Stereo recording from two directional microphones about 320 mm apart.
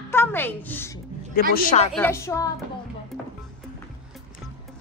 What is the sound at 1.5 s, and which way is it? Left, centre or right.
Speech, left.